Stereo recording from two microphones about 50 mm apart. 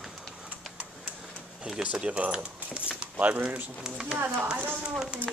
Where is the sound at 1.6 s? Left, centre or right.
Centre.